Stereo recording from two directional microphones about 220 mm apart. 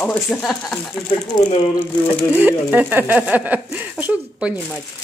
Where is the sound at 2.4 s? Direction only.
10° right (ahead or behind).